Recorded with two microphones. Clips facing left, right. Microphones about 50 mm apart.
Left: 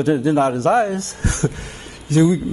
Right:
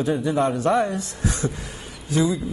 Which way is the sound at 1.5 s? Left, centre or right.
Left.